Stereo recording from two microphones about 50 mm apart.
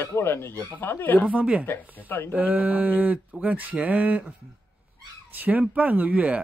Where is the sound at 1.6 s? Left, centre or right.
Left.